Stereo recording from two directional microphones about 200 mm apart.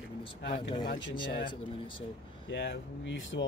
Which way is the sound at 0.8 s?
50° left (ahead or behind).